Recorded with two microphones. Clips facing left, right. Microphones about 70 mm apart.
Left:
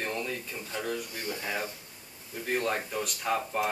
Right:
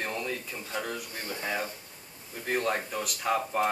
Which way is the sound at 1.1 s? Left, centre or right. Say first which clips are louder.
Left 1 dB; right.